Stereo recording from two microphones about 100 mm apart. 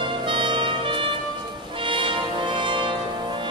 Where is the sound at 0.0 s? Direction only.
55° right (ahead or behind).